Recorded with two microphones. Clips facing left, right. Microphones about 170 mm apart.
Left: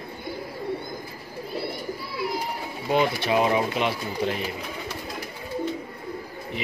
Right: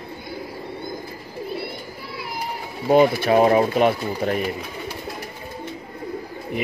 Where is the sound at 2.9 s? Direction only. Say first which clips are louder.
Right 7 dB; 45° right (ahead or behind).